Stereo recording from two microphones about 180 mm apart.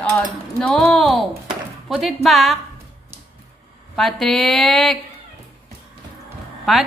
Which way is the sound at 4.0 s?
Centre (ahead or behind).